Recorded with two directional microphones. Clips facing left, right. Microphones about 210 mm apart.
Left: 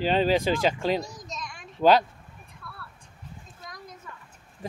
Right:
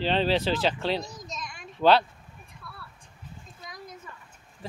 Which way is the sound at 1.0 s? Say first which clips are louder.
Left 1 dB; centre (ahead or behind).